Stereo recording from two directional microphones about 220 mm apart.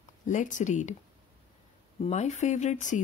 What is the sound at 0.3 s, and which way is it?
Speech, 35° left (ahead or behind).